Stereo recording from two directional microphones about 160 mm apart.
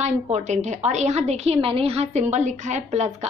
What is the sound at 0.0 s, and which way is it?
A woman's voice, 45° right (ahead or behind).